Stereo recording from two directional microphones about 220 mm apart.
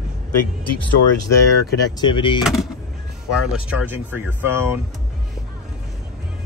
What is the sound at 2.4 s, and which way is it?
Speech, centre (ahead or behind).